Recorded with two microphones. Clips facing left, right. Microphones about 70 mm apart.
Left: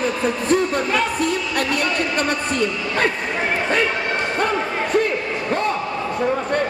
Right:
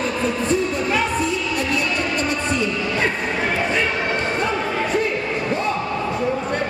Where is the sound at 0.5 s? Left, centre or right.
Left.